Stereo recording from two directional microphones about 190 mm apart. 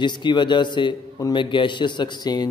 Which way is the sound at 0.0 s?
25° left (ahead or behind).